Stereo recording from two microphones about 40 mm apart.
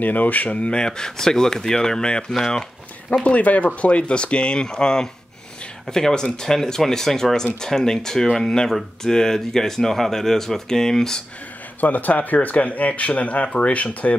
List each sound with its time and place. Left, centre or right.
0.0 s speech: left
3.3 s speech: left; by 11.2 s centre
11.8 s speech: left